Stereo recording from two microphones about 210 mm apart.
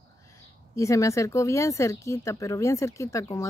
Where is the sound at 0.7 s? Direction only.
15° left (ahead or behind).